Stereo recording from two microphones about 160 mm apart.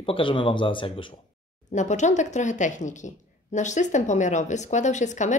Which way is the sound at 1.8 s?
50° left (ahead or behind).